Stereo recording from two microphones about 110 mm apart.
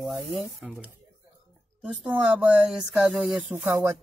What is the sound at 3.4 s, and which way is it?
Speech, 20° right (ahead or behind).